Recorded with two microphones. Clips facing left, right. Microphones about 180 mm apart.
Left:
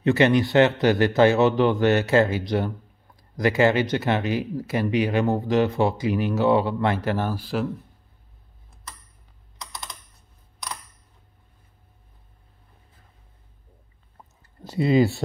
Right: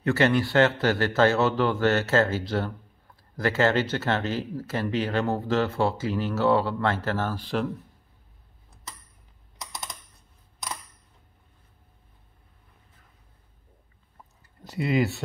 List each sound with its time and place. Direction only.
0.0 s speech: 20° left (ahead or behind)
14.6 s speech: 30° left (ahead or behind)